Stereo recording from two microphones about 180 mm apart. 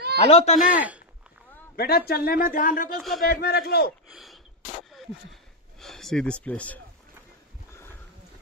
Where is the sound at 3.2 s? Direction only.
60° left (ahead or behind).